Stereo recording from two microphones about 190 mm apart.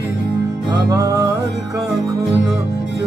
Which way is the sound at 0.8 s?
20° right (ahead or behind).